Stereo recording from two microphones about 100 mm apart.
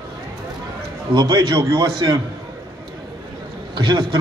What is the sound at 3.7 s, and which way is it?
Speech, 50° right (ahead or behind).